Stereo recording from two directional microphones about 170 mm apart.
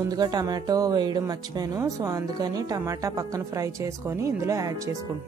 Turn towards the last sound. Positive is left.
turn(degrees=-20)  # may be behind; listen again after turning